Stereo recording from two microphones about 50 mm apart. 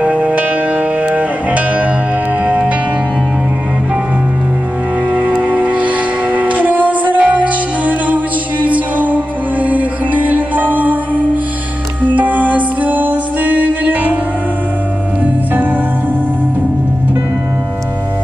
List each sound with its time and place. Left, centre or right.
0.0 s music: right
5.1 s music: right